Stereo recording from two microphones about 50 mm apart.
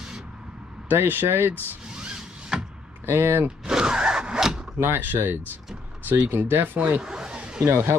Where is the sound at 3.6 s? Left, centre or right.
Centre.